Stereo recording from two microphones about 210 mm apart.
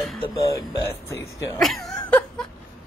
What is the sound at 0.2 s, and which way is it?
Speech, 15° left (ahead or behind).